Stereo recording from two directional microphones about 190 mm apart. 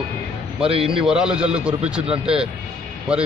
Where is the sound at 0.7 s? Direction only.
30° right (ahead or behind).